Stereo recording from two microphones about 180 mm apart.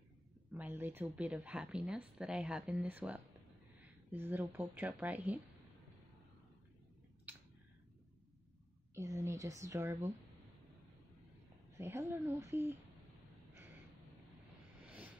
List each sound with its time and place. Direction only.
0.5 s speech: 10° right (ahead or behind)
7.3 s a sound: 10° right (ahead or behind)
8.9 s speech: 15° right (ahead or behind)
11.8 s speech: 15° right (ahead or behind)